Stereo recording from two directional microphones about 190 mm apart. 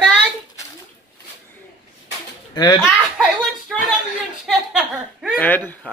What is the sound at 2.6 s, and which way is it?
Speech, 20° left (ahead or behind).